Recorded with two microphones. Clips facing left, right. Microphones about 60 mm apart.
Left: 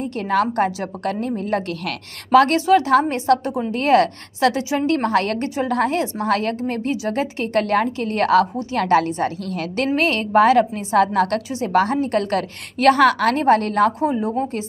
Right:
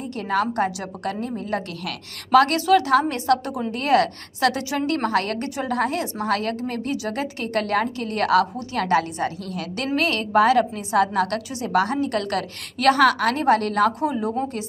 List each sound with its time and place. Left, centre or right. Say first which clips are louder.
0.0 s a woman's voice: left 3 dB; left